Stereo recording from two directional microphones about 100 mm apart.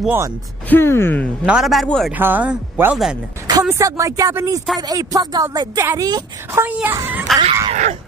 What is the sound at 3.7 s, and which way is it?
Speech, 30° right (ahead or behind).